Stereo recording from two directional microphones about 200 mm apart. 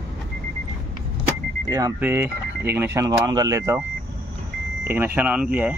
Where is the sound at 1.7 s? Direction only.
15° right (ahead or behind).